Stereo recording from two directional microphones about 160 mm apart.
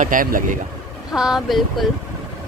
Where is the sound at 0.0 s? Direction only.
60° right (ahead or behind).